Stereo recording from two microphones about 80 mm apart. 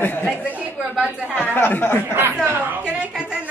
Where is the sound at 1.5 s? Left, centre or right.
Left.